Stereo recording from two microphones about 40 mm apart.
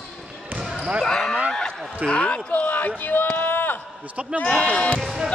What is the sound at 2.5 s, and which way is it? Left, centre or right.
Speech, left.